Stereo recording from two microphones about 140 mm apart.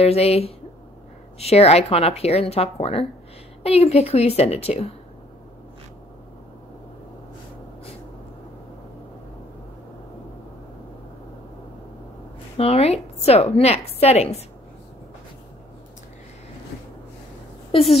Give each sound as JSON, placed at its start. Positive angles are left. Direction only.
{"t": 0.0, "sound": "a woman's voice", "side_deg": 45}
{"t": 12.5, "sound": "a woman's voice", "side_deg": 45}
{"t": 17.6, "sound": "a woman's voice", "side_deg": 40}